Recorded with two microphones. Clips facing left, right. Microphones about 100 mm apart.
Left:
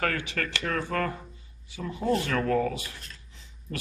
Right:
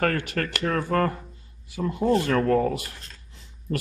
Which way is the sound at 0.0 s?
50° right (ahead or behind).